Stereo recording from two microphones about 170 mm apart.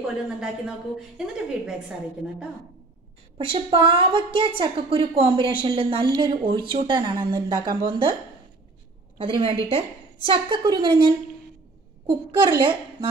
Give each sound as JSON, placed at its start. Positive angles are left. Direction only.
{"t": 0.0, "sound": "a woman's voice", "side_deg": -5}
{"t": 3.5, "sound": "a woman's voice", "side_deg": -30}
{"t": 9.2, "sound": "a woman's voice", "side_deg": -30}
{"t": 12.3, "sound": "a woman's voice", "side_deg": -25}